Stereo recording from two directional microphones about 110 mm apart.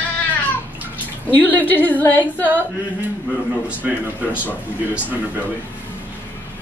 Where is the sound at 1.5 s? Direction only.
15° left (ahead or behind).